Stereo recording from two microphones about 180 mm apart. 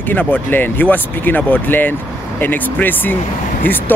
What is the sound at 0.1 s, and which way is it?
Speech, 10° left (ahead or behind).